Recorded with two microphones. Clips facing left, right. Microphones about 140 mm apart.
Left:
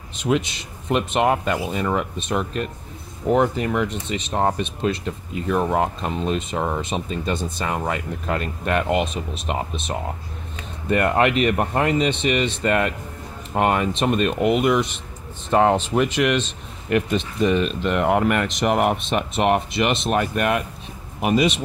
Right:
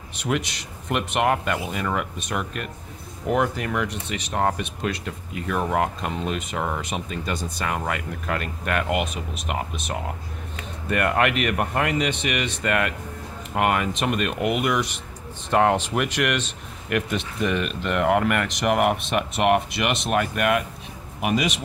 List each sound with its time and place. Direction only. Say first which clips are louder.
0.8 s speech: left 3 dB; 25° left (ahead or behind)
15.5 s speech: left 2 dB; 10° left (ahead or behind)
17.4 s speech: left 5 dB; 25° left (ahead or behind)